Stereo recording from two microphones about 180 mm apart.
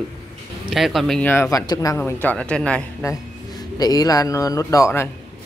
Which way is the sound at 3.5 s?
20° left (ahead or behind).